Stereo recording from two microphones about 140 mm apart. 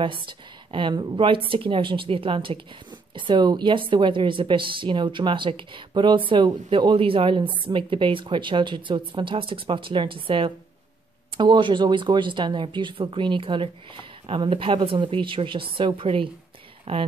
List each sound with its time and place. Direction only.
0.0 s a woman's voice: 35° right (ahead or behind)